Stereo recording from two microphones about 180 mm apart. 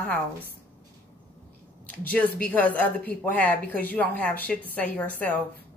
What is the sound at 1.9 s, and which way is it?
Speech, 10° left (ahead or behind).